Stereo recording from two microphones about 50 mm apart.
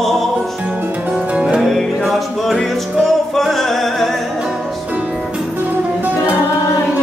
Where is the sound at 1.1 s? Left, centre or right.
Centre.